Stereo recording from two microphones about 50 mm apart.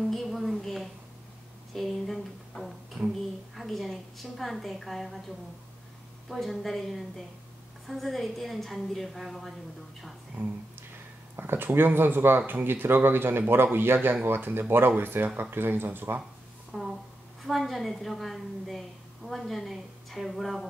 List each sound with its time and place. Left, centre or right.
0.0 s a woman's voice: centre
1.7 s a sound: centre
3.5 s a woman's voice: centre
6.2 s a woman's voice: centre
10.3 s a sound: right
11.3 s speech: right
16.7 s a woman's voice: centre